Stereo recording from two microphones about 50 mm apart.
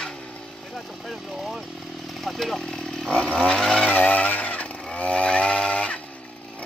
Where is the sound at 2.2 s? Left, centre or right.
Centre.